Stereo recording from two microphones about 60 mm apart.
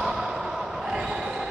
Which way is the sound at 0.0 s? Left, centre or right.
Centre.